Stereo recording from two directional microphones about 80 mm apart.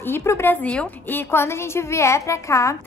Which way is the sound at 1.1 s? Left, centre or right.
Left.